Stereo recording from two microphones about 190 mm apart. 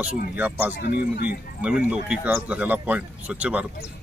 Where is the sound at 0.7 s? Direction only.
55° left (ahead or behind).